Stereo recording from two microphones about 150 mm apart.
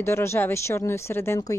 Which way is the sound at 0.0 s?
20° left (ahead or behind).